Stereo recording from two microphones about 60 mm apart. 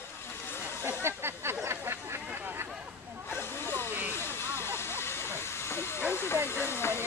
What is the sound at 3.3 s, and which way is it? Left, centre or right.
Snake, left.